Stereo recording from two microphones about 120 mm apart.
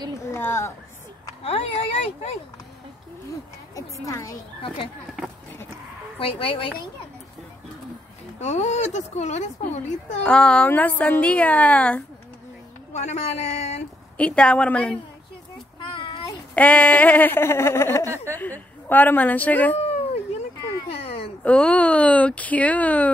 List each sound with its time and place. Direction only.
0.3 s speech: 20° left (ahead or behind)
1.4 s speech: 55° left (ahead or behind)
4.0 s speech: 25° left (ahead or behind)
6.1 s speech: 50° left (ahead or behind)
8.4 s speech: 75° left (ahead or behind)
10.2 s a woman's voice: 10° left (ahead or behind)
12.9 s speech: 70° left (ahead or behind)
14.1 s a woman's voice: 10° left (ahead or behind)
15.8 s a sound: 45° left (ahead or behind)
16.5 s a woman's voice: 10° left (ahead or behind)
18.0 s a woman's voice: 20° right (ahead or behind)
18.3 s a woman's voice: 15° left (ahead or behind)
20.9 s a sound: 55° left (ahead or behind)
21.5 s a woman's voice: 10° left (ahead or behind)